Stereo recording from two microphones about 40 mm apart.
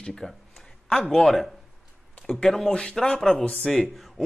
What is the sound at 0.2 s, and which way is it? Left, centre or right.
Speech, centre.